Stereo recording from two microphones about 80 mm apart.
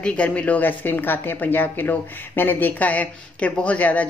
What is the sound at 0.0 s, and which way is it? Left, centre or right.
Speech, centre.